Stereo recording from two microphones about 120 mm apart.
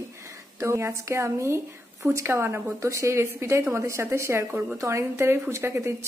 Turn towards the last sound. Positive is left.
turn(degrees=-20)  # may be behind; listen again after turning